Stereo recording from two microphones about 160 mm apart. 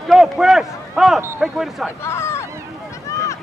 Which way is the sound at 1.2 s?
15° right (ahead or behind).